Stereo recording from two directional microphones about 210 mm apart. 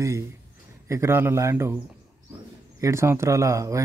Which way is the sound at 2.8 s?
10° right (ahead or behind).